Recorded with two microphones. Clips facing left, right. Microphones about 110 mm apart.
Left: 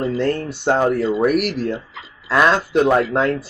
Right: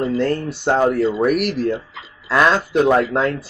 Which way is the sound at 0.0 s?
Centre (ahead or behind).